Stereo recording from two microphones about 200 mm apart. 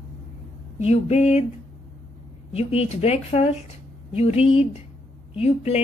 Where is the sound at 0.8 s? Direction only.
35° left (ahead or behind).